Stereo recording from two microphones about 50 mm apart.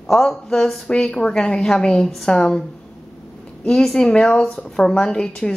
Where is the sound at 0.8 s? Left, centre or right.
Centre.